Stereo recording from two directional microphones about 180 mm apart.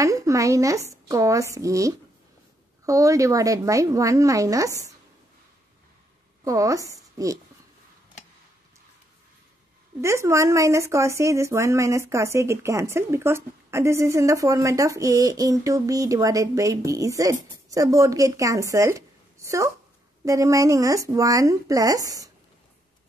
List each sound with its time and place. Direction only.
0.0 s speech: 20° right (ahead or behind)
6.4 s speech: 20° right (ahead or behind)
10.0 s speech: 15° right (ahead or behind)